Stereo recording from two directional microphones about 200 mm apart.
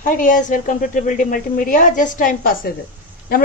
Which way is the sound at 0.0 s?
40° left (ahead or behind).